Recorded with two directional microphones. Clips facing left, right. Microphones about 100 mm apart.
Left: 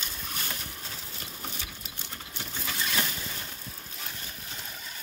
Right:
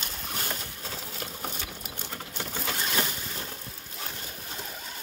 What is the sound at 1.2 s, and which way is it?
Sewing machine, 50° right (ahead or behind).